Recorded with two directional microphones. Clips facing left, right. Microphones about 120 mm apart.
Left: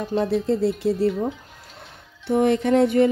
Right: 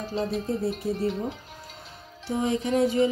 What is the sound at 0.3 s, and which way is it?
Speech, 80° left.